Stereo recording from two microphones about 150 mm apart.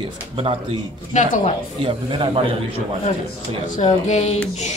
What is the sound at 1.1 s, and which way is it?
Speech, 55° left (ahead or behind).